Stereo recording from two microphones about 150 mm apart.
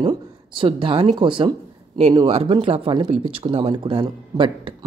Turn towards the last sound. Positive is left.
turn(degrees=-35)  # may be behind; listen again after turning